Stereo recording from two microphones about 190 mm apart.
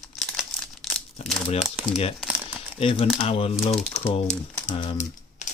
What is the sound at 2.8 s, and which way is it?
Speech, 30° left (ahead or behind).